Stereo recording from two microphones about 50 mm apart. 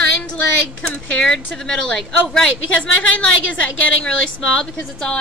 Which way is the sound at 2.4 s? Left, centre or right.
Left.